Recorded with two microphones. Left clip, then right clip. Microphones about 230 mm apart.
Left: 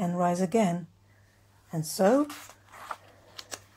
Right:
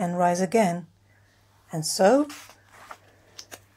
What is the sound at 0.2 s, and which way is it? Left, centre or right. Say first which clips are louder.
Speech: right 5 dB; right.